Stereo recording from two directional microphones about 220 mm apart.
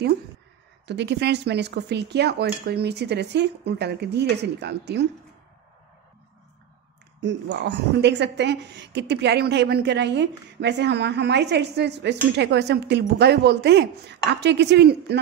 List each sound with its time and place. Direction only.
0.8 s a woman's voice: 50° right (ahead or behind)
7.2 s a woman's voice: 55° right (ahead or behind)